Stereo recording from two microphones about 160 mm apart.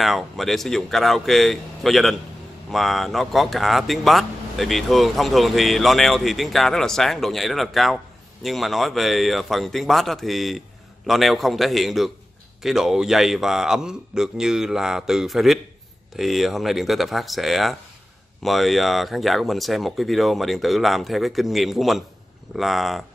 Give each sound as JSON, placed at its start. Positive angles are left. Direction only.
{"t": 0.0, "sound": "speech", "side_deg": 0}